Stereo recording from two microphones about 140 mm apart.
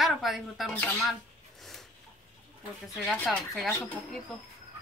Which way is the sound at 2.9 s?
5° left (ahead or behind).